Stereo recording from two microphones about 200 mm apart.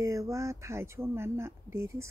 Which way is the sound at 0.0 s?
15° right (ahead or behind).